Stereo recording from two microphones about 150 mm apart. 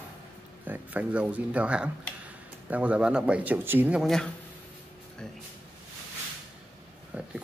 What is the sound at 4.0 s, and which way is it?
Speech, 5° left (ahead or behind).